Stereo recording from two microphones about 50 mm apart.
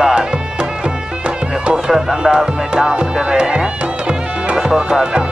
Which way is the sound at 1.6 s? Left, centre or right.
Centre.